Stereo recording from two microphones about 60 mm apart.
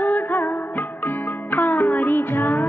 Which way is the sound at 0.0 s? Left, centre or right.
Left.